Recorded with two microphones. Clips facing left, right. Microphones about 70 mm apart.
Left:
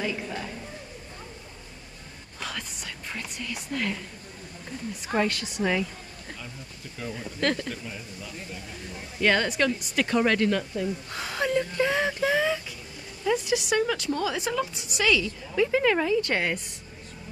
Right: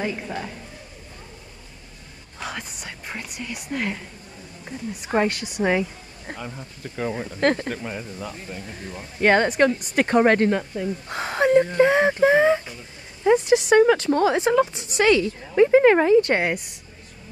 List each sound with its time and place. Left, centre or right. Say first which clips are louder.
0.0 s a man's voice: right 3 dB; right
2.4 s whispering: right 3 dB; right
3.7 s speech: right 3 dB; right
5.1 s speech: right 4 dB; right
5.7 s a sound: right 6 dB; right
6.3 s a woman's voice: right 10 dB; right
7.7 s a woman's voice: right 7 dB; right
14.4 s a woman's voice: right 9 dB; right